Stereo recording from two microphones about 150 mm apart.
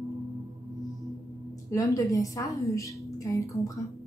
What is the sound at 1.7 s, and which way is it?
Speech, 20° left (ahead or behind).